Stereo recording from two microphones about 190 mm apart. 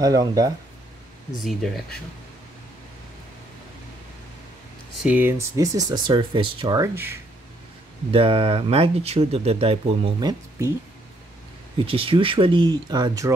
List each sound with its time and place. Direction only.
0.0 s speech: 20° right (ahead or behind)
1.4 s speech: centre (ahead or behind)
5.0 s speech: 10° right (ahead or behind)
8.1 s speech: 30° right (ahead or behind)
11.8 s speech: 30° right (ahead or behind)